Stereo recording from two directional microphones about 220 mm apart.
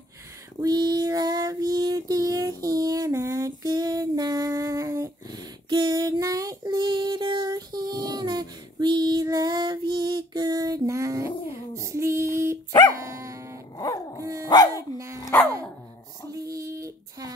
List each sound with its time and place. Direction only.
0.6 s female singing: 20° right (ahead or behind)
12.9 s dog: 15° right (ahead or behind)
14.9 s dog: 20° left (ahead or behind)
15.3 s dog: 10° left (ahead or behind)
16.3 s a sound: 15° right (ahead or behind)